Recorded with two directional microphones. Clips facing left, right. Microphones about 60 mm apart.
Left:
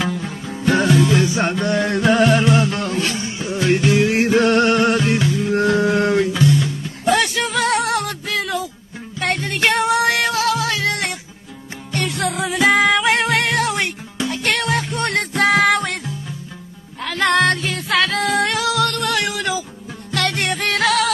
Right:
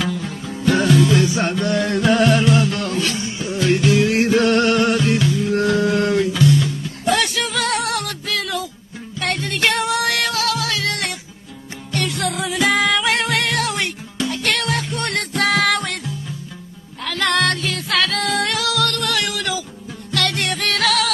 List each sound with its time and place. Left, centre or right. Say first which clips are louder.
0.0 s music: left 1 dB; left
17.0 s music: left 3 dB; left